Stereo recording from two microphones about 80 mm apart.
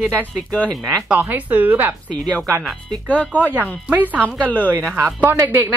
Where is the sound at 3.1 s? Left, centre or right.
Centre.